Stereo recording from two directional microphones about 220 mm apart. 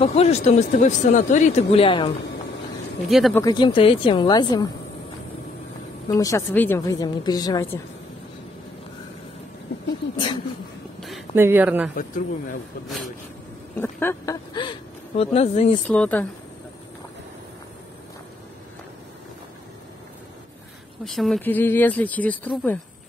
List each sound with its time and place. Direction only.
0.0 s speech: 30° left (ahead or behind)
3.1 s speech: centre (ahead or behind)
3.3 s speech: 20° left (ahead or behind)
6.0 s speech: 15° left (ahead or behind)
11.0 s a sound: centre (ahead or behind)
11.4 s speech: 10° right (ahead or behind)
11.9 s a man's voice: 35° left (ahead or behind)
12.8 s speech: centre (ahead or behind)
13.7 s a sound: 10° left (ahead or behind)
15.1 s speech: 30° left (ahead or behind)
15.9 s speech: 5° left (ahead or behind)
21.0 s speech: centre (ahead or behind)